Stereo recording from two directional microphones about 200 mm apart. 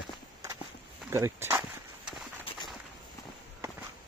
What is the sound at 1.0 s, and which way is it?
Speech, 15° right (ahead or behind).